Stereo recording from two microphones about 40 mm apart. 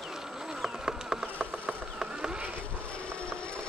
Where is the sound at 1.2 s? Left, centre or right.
Right.